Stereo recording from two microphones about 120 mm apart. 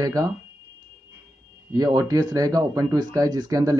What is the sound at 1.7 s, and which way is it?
Speech, 30° right (ahead or behind).